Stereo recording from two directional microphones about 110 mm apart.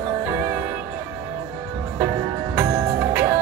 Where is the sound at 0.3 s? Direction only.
25° right (ahead or behind).